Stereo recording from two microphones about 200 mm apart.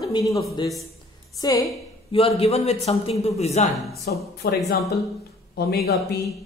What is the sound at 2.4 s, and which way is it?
A man's voice, 30° left (ahead or behind).